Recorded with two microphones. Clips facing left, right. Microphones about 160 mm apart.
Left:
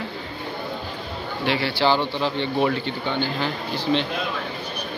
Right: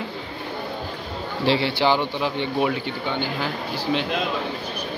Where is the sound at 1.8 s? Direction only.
15° right (ahead or behind).